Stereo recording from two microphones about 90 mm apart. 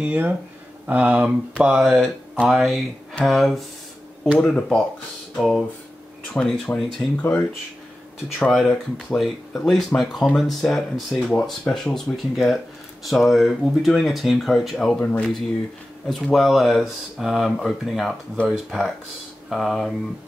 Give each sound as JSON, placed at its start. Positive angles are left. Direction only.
{"t": 0.0, "sound": "speech", "side_deg": -20}
{"t": 4.4, "sound": "speech", "side_deg": 10}
{"t": 5.3, "sound": "a sound", "side_deg": 5}
{"t": 6.3, "sound": "speech", "side_deg": 10}
{"t": 7.2, "sound": "speech", "side_deg": 20}
{"t": 8.5, "sound": "speech", "side_deg": 5}
{"t": 16.1, "sound": "speech", "side_deg": 5}